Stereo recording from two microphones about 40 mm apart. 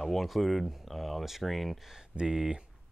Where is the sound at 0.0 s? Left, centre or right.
Centre.